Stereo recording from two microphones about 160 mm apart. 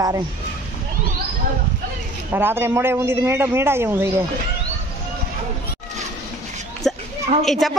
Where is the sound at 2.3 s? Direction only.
15° right (ahead or behind).